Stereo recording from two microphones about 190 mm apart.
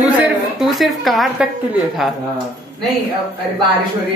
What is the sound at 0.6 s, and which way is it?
Speech, centre (ahead or behind).